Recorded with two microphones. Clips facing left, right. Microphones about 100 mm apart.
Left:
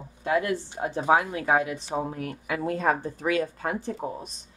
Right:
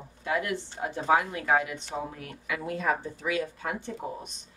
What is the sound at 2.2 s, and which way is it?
A woman's voice, 40° left (ahead or behind).